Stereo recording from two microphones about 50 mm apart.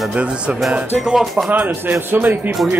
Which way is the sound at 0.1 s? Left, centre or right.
Right.